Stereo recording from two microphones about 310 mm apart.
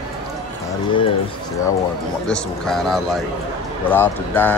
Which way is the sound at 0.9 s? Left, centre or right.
Centre.